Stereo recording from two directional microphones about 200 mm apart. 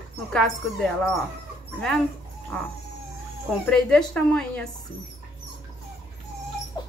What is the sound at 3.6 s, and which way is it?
Speech, 5° left (ahead or behind).